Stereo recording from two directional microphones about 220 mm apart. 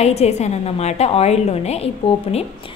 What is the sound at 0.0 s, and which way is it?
A woman's voice, 30° left (ahead or behind).